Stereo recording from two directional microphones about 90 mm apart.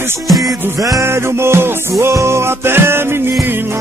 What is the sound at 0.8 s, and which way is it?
Music, 40° right (ahead or behind).